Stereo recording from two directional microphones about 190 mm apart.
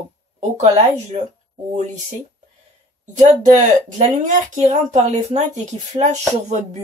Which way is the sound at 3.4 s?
40° right (ahead or behind).